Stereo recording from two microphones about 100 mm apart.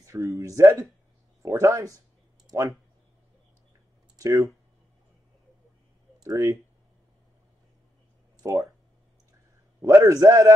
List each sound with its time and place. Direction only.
0.0 s a man's voice: 35° right (ahead or behind)
2.4 s a sound: 35° right (ahead or behind)
4.2 s speech: 35° right (ahead or behind)
6.2 s a man's voice: 30° right (ahead or behind)
8.4 s speech: 40° right (ahead or behind)
9.8 s a man's voice: 30° right (ahead or behind)